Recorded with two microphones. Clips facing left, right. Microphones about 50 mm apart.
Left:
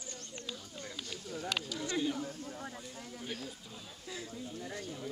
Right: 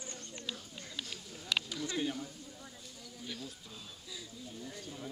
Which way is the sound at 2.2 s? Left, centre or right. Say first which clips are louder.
Left 7 dB; left.